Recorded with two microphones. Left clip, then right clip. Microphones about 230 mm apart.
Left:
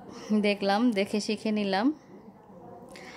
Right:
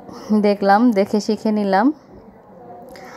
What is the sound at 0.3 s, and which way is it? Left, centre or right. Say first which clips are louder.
Speech: right 11 dB; centre.